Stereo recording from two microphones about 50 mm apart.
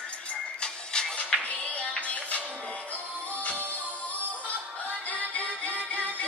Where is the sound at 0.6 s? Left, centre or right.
Centre.